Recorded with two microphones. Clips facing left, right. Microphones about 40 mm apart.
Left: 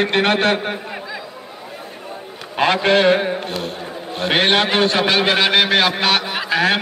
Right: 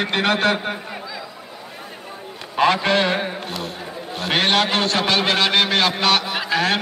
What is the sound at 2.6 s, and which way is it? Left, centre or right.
A man's voice, left.